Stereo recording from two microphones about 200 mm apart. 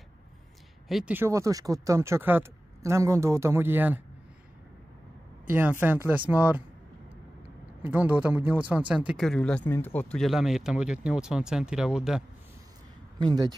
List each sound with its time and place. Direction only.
0.8 s speech: 5° right (ahead or behind)
5.5 s speech: 10° right (ahead or behind)
7.8 s speech: 10° right (ahead or behind)
13.2 s speech: 20° right (ahead or behind)